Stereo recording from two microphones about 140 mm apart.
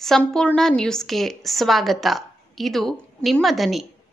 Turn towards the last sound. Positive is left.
turn(degrees=0)  # may be behind; listen again after turning